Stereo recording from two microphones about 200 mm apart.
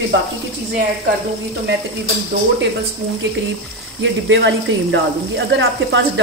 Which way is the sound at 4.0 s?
65° right (ahead or behind).